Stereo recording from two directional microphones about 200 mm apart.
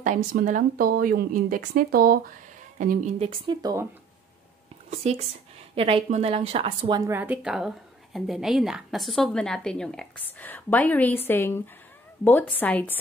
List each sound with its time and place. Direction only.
0.0 s a woman's voice: 40° right (ahead or behind)
3.3 s speech: 20° right (ahead or behind)
5.8 s a woman's voice: 30° right (ahead or behind); by 12.9 s 10° left (ahead or behind)